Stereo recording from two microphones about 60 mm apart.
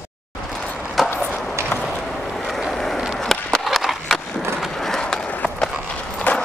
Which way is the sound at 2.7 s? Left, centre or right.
Centre.